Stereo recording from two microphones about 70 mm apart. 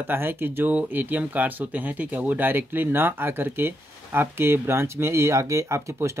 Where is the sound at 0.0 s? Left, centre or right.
Right.